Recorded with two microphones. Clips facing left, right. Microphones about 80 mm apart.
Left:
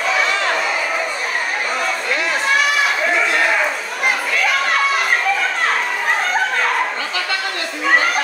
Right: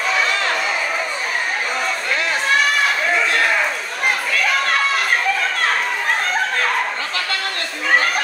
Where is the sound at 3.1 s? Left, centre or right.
Centre.